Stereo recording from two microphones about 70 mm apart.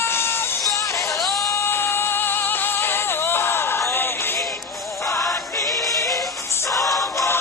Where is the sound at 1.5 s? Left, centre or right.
Left.